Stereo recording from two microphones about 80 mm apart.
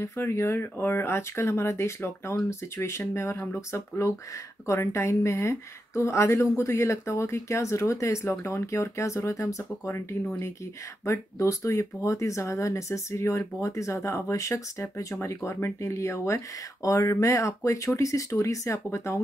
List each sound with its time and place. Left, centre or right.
0.0 s a woman's voice: left